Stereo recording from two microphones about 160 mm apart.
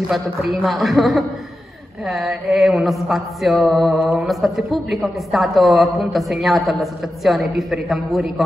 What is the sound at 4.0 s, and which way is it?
Mantra, 15° right (ahead or behind).